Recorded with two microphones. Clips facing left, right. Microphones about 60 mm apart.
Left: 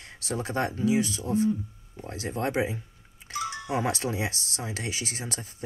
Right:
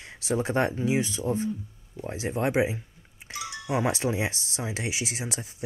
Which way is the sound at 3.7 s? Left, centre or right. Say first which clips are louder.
Right 4 dB; right.